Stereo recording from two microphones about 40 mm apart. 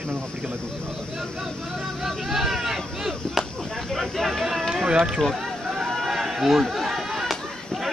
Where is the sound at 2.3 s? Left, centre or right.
Centre.